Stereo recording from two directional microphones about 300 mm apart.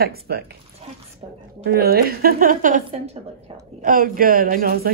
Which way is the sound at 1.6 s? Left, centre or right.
Right.